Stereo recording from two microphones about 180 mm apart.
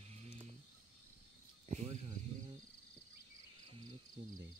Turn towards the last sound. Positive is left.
turn(degrees=-20)  # may be behind; listen again after turning